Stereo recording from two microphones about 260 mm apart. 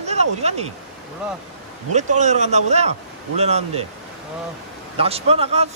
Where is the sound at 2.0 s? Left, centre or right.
Right.